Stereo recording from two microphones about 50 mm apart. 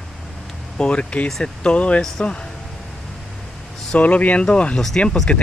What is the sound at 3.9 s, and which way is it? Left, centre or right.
Speech, left.